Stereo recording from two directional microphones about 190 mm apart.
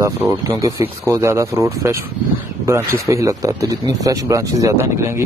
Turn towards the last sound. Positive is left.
turn(degrees=-15)  # may be behind; listen again after turning